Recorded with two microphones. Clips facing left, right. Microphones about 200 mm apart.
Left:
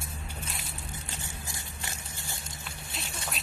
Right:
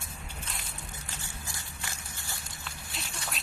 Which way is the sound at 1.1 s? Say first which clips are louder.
Left 2 dB; 20° left (ahead or behind).